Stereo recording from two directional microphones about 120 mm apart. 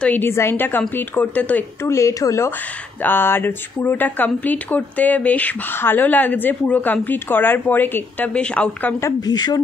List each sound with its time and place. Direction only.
0.0 s speech: 15° left (ahead or behind)
9.0 s speech: 35° left (ahead or behind)